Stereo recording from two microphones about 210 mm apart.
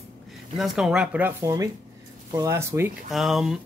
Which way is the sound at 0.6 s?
5° right (ahead or behind).